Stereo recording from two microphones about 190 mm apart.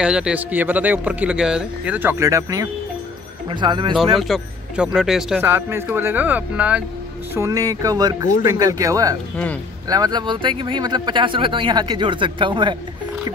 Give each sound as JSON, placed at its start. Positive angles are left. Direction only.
{"t": 0.0, "sound": "speech", "side_deg": -5}
{"t": 3.9, "sound": "speech", "side_deg": 0}